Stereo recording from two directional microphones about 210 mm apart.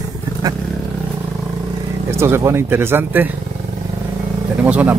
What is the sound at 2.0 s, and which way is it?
Speech, 10° right (ahead or behind).